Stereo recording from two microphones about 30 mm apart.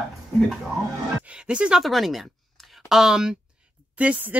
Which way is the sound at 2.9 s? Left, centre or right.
Centre.